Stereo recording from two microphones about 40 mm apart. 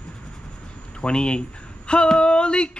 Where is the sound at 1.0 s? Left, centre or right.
Left.